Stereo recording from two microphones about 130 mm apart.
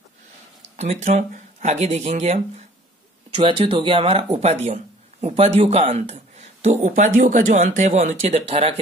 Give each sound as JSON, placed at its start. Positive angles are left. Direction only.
{"t": 0.7, "sound": "speech", "side_deg": -60}
{"t": 3.3, "sound": "speech", "side_deg": -45}